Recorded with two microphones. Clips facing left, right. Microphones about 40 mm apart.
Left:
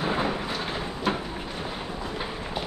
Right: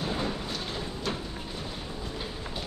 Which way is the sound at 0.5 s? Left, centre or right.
Left.